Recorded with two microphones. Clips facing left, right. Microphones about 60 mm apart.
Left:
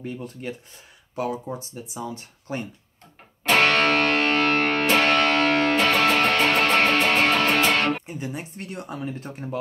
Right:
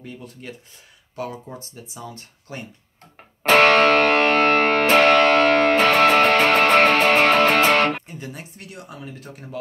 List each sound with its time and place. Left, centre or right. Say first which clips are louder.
1.1 s speech: left 3 dB; left
3.4 s music: right 5 dB; right
8.1 s speech: left 3 dB; left